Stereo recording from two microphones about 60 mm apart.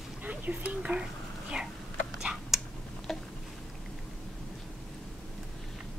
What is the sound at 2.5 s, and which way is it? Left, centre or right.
Tick-tock, centre.